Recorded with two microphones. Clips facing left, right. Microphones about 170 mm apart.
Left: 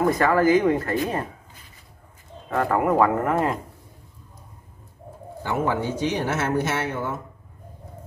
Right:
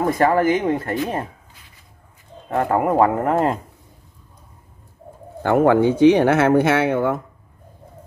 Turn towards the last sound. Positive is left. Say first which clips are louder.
# right 9 dB
turn(degrees=-60)  # may be behind; listen again after turning